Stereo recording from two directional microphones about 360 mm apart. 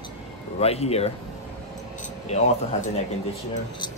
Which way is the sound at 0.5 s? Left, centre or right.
Centre.